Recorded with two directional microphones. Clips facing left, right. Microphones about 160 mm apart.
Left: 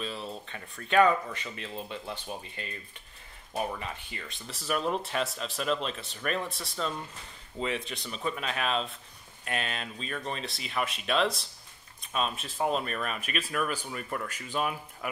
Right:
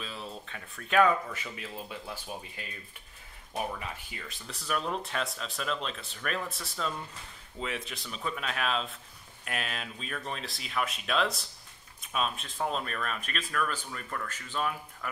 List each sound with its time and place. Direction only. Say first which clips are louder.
0.0 s speech: left 4 dB; centre (ahead or behind); by 15.0 s 15° left (ahead or behind)